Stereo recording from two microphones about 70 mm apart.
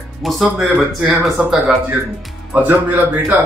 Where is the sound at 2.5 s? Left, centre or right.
Right.